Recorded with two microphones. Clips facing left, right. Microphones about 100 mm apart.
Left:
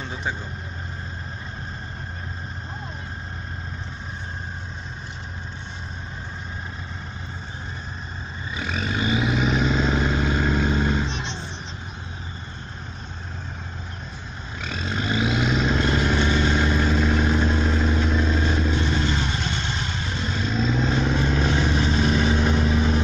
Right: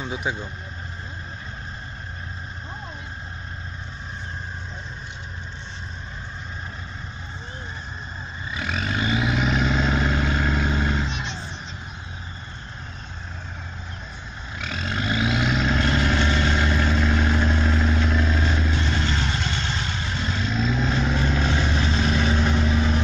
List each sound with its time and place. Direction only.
0.0 s vehicle: 10° right (ahead or behind)
8.5 s vehicle: 20° left (ahead or behind)
14.7 s vehicle: 20° left (ahead or behind)